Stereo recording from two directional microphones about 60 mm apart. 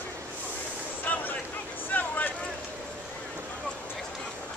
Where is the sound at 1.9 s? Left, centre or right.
Left.